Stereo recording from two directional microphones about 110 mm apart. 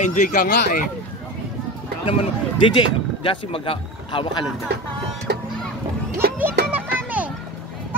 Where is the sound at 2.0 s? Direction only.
50° left (ahead or behind).